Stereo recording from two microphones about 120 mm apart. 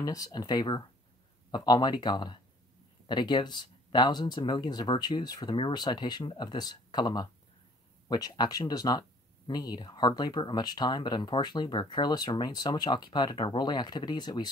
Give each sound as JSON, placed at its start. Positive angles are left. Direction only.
{"t": 0.0, "sound": "speech", "side_deg": 30}